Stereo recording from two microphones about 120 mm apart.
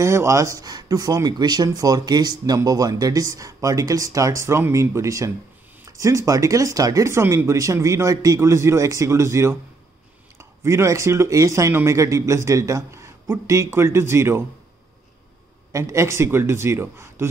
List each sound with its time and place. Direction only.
0.0 s speech: 25° right (ahead or behind)
15.7 s speech: 25° right (ahead or behind)